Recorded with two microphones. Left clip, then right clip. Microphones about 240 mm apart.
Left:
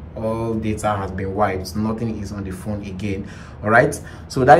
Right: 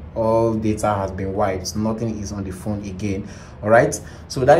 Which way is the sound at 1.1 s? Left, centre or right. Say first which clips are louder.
Left 1 dB; centre.